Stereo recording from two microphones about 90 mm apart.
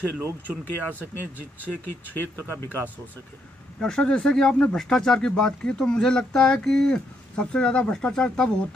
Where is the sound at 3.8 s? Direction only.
10° left (ahead or behind).